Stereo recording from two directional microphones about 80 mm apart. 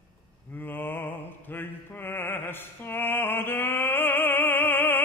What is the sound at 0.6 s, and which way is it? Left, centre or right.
Mantra, left.